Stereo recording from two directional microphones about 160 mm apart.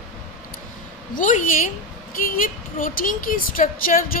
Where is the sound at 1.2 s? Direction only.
50° left (ahead or behind).